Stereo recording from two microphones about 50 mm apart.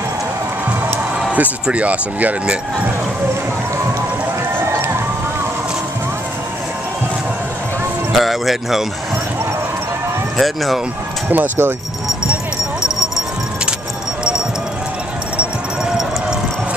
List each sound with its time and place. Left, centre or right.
1.3 s speech: right
8.1 s speech: centre
10.3 s speech: centre
11.2 s speech: right
15.8 s run: centre